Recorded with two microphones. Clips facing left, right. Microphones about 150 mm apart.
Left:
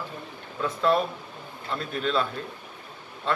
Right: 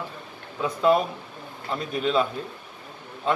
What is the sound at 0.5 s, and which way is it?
Speech, 10° right (ahead or behind).